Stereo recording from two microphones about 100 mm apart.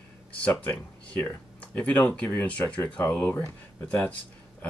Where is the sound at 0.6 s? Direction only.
15° left (ahead or behind).